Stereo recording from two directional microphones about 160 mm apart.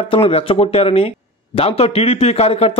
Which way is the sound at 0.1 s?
35° left (ahead or behind).